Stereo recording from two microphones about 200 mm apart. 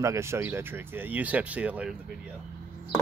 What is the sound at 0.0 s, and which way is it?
Speech, 15° right (ahead or behind).